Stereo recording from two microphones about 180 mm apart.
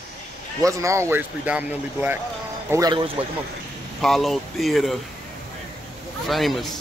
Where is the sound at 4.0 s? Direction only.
Centre (ahead or behind).